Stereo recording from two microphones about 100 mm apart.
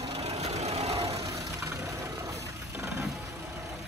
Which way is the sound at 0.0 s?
90° right.